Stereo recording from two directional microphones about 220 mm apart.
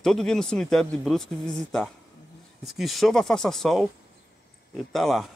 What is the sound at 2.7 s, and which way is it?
Speech, centre (ahead or behind).